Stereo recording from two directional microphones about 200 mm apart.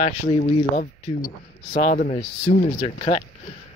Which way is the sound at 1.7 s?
40° left (ahead or behind).